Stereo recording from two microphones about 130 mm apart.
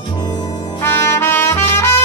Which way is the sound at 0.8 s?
20° left (ahead or behind).